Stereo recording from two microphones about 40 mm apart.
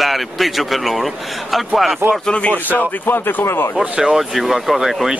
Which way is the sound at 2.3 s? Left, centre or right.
Left.